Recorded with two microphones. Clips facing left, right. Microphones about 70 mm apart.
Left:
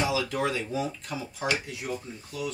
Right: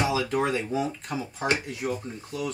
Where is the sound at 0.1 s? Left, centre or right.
Right.